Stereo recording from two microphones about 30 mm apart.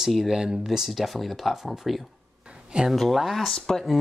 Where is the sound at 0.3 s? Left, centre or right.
Right.